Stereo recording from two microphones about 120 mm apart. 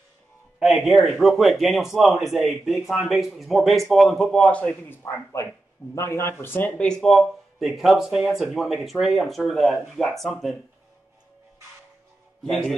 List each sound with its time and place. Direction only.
0.6 s speech: centre (ahead or behind)
5.0 s speech: 25° left (ahead or behind); by 10.5 s centre (ahead or behind)
12.4 s speech: centre (ahead or behind)